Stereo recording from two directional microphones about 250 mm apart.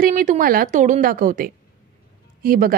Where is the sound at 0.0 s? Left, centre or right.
Right.